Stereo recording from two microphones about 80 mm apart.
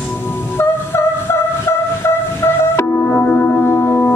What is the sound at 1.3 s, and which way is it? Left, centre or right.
Train, left.